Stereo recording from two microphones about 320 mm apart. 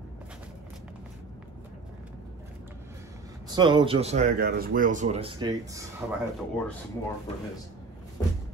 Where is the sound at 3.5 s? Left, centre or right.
Centre.